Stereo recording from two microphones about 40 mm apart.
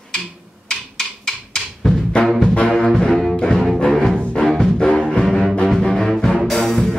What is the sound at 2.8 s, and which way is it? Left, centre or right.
Music, centre.